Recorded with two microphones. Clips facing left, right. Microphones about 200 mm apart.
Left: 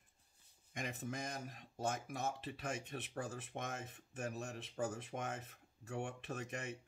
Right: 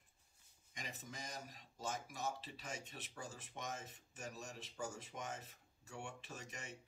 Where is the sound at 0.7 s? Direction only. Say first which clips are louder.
Left 8 dB; 55° left (ahead or behind).